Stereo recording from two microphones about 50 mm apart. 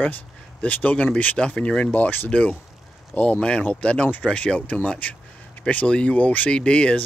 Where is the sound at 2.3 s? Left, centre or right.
Left.